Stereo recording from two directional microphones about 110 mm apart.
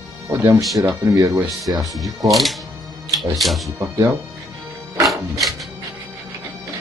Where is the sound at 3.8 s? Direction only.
25° right (ahead or behind).